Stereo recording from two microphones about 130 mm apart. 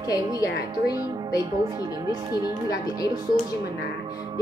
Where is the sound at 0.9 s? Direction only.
35° right (ahead or behind).